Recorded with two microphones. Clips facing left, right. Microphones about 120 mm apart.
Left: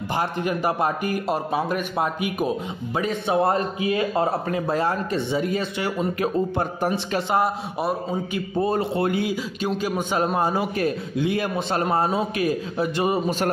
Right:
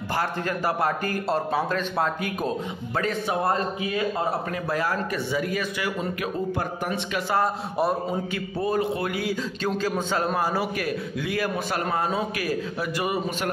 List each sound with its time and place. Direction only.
0.1 s a man's voice: 20° left (ahead or behind)
9.8 s a man's voice: 15° left (ahead or behind); by 13.5 s 30° left (ahead or behind)